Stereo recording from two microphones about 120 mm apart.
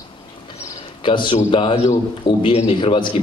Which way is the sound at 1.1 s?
45° left (ahead or behind).